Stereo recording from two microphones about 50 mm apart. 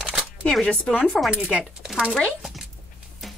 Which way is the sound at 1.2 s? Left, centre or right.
Centre.